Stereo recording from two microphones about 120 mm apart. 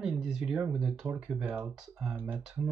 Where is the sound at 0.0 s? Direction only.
5° right (ahead or behind).